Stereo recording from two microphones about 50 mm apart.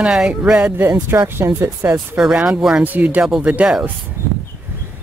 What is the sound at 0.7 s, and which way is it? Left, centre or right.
Speech, right.